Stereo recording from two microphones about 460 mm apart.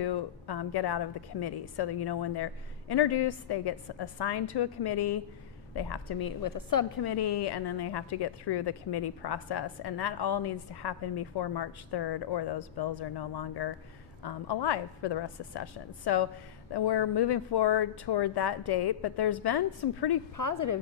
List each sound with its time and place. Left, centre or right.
0.0 s a woman's voice: left
20.3 s a woman's voice: left